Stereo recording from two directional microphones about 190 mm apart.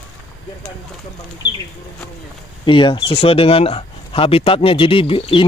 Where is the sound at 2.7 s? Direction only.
25° left (ahead or behind).